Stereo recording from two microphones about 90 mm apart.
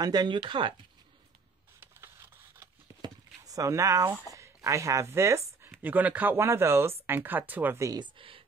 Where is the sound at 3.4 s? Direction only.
40° right (ahead or behind).